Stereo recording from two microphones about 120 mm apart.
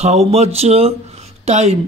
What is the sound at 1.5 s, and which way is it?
Speech, 70° right (ahead or behind).